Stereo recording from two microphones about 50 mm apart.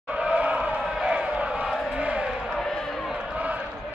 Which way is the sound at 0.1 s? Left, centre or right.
Right.